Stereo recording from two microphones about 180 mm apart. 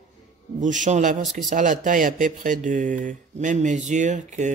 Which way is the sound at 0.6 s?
45° right (ahead or behind).